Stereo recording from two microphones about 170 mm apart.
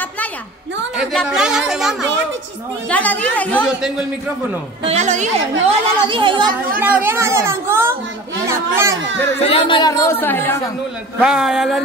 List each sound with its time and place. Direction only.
0.9 s speech: centre (ahead or behind)
2.9 s a woman's voice: 10° left (ahead or behind)
4.8 s a woman's voice: 45° right (ahead or behind)
5.7 s speech: 30° right (ahead or behind)
6.8 s speech: 10° right (ahead or behind)
9.4 s a woman's voice: 35° left (ahead or behind); by 10.6 s 15° left (ahead or behind)
11.1 s speech: 5° right (ahead or behind)